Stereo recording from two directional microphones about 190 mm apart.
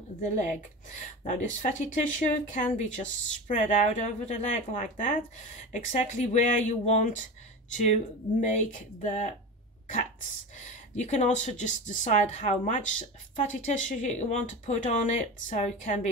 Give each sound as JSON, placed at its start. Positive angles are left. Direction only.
{"t": 0.2, "sound": "a woman's voice", "side_deg": 40}
{"t": 10.6, "sound": "a woman's voice", "side_deg": 40}